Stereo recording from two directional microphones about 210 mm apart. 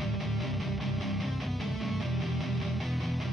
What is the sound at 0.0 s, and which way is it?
Music, centre (ahead or behind).